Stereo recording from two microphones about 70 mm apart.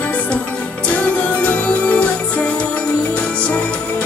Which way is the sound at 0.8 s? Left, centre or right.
Centre.